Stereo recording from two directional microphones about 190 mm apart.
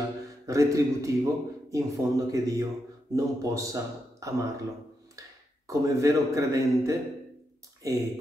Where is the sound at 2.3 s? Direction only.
20° right (ahead or behind).